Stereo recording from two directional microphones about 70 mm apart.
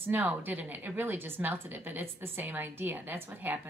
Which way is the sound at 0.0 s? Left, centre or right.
Right.